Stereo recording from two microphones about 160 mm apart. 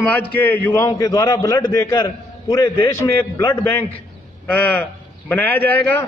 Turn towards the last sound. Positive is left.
turn(degrees=10)  # may be behind; listen again after turning